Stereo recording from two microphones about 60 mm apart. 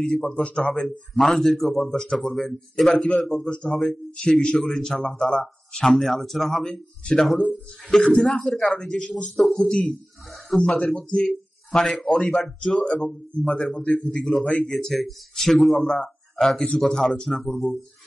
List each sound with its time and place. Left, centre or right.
0.0 s speech: centre
0.3 s a man's voice: centre
0.8 s a man's voice: centre
3.7 s a man's voice: centre
8.7 s a man's voice: centre
9.4 s speech: centre